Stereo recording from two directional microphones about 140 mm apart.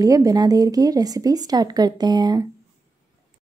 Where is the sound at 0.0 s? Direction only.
25° right (ahead or behind).